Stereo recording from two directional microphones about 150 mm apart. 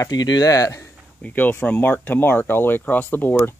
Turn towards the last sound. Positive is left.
turn(degrees=10)  # may be behind; listen again after turning